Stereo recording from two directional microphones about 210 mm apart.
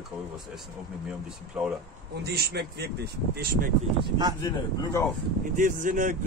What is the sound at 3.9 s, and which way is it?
Speech, 20° right (ahead or behind).